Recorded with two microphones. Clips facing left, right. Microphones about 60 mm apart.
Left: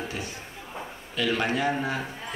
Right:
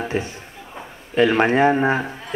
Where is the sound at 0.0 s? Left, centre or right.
Right.